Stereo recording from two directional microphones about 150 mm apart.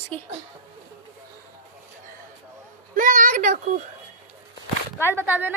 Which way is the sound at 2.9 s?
65° right (ahead or behind).